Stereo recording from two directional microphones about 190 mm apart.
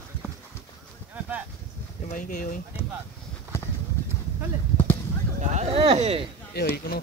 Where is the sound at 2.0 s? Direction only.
45° left (ahead or behind).